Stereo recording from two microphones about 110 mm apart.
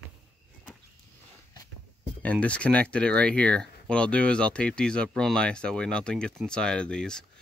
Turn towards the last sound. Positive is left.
turn(degrees=5)  # may be behind; listen again after turning